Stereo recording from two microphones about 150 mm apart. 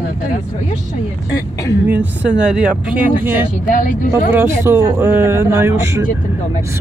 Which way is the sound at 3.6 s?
65° left (ahead or behind).